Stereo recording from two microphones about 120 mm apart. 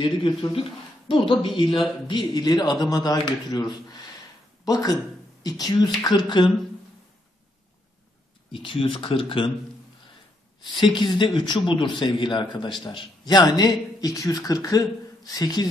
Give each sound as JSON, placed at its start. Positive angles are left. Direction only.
{"t": 0.0, "sound": "speech", "side_deg": 45}
{"t": 8.5, "sound": "speech", "side_deg": 50}
{"t": 10.6, "sound": "speech", "side_deg": 40}